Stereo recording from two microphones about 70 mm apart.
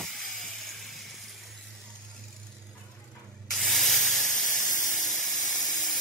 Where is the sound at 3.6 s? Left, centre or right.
Centre.